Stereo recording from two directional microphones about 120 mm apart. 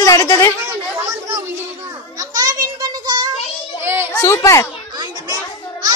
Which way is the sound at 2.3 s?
30° right (ahead or behind).